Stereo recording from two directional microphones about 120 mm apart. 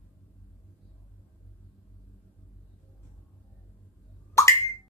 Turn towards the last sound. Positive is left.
turn(degrees=25)  # may be behind; listen again after turning